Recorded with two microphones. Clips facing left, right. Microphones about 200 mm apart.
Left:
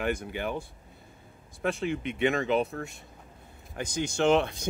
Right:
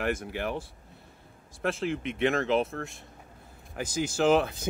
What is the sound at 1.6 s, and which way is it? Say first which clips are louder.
Speech: even; centre (ahead or behind).